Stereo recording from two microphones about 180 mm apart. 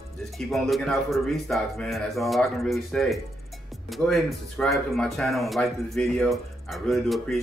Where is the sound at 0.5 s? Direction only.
Centre (ahead or behind).